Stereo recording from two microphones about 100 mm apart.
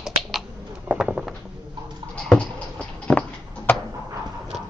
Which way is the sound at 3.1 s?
15° left (ahead or behind).